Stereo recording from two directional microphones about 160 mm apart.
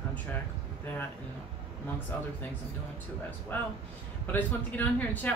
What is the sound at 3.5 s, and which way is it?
A man's voice, 10° left (ahead or behind).